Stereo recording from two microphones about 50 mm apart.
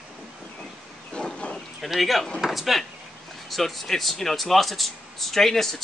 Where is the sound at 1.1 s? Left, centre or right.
Left.